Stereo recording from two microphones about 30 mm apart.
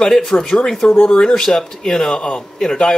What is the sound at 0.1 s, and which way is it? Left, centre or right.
Speech, centre.